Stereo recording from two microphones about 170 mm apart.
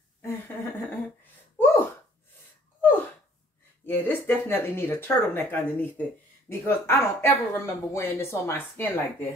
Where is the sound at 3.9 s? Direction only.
10° left (ahead or behind).